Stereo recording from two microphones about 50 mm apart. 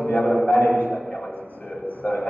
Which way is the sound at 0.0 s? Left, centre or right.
Left.